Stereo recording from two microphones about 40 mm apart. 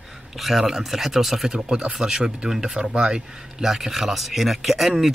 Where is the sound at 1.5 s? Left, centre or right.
Right; by 4.9 s centre.